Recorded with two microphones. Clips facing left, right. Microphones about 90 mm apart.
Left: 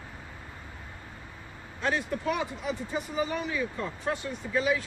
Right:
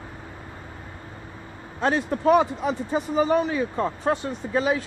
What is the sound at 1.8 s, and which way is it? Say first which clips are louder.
Speech: right 8 dB; 35° right (ahead or behind).